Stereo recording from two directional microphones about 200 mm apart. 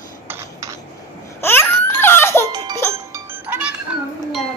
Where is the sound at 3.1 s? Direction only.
10° right (ahead or behind).